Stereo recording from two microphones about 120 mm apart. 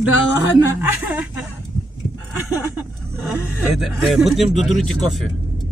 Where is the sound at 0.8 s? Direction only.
15° right (ahead or behind).